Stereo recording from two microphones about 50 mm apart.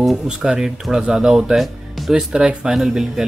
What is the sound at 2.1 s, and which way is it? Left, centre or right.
Speech, centre.